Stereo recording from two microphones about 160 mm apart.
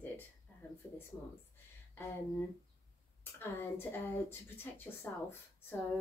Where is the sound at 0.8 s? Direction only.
10° left (ahead or behind).